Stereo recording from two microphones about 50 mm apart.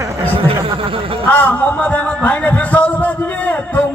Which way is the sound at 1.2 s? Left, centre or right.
Left.